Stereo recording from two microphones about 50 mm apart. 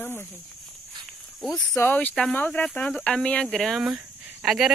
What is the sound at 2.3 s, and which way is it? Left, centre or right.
Speech, left.